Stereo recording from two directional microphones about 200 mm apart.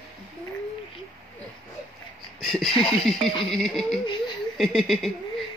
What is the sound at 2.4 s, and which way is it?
Speech, centre (ahead or behind).